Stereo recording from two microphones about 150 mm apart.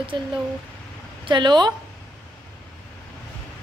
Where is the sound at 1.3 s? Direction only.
30° right (ahead or behind).